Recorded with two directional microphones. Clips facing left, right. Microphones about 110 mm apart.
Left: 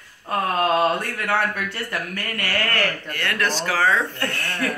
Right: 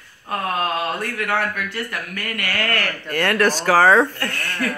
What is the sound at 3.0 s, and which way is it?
Speech, 45° right (ahead or behind).